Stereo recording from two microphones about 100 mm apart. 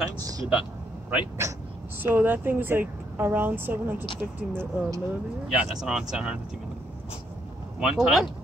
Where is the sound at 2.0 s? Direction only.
15° right (ahead or behind).